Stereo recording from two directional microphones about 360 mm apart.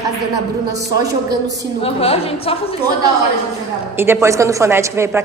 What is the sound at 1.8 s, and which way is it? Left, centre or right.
Speech, centre.